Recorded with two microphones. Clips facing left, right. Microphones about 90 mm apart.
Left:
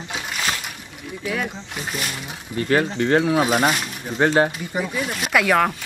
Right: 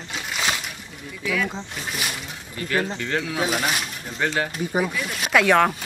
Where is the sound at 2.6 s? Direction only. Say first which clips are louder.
Left 6 dB; 40° left (ahead or behind).